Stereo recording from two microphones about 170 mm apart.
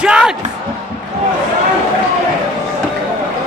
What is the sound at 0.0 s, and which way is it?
Music, 5° right (ahead or behind).